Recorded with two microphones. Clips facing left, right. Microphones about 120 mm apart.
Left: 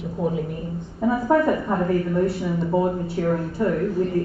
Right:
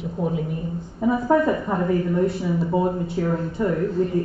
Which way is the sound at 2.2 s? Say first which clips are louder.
Even; 10° right (ahead or behind).